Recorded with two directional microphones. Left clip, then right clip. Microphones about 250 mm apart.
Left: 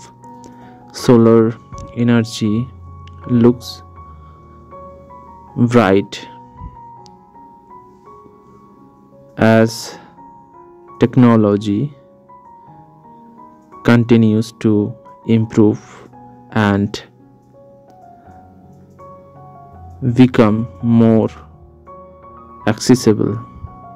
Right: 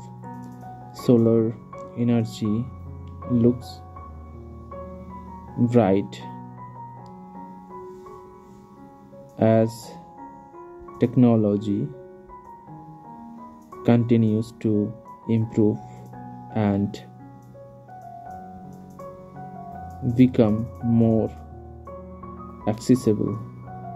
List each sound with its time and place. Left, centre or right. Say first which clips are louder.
0.9 s speech: left 9 dB; left
5.6 s speech: left 8 dB; left
9.4 s speech: left 7 dB; left
13.8 s speech: left 8 dB; left
20.2 s speech: left 7 dB; left
22.7 s speech: left 8 dB; left